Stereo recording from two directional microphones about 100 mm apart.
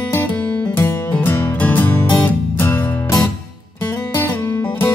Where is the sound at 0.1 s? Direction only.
20° left (ahead or behind).